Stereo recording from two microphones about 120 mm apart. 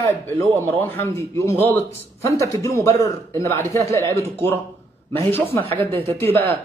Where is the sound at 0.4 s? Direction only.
20° left (ahead or behind).